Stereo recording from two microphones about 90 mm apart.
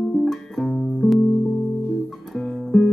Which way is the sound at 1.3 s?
10° left (ahead or behind).